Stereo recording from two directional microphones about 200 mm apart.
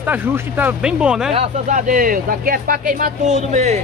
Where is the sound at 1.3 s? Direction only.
40° right (ahead or behind).